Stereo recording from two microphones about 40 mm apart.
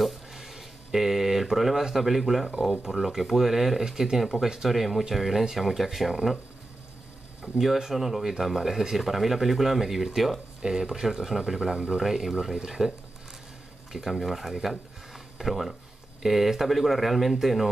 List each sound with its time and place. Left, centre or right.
0.3 s a sound: centre
2.0 s speech: centre
7.5 s speech: centre
11.7 s speech: centre
12.0 s speech: centre
13.9 s speech: centre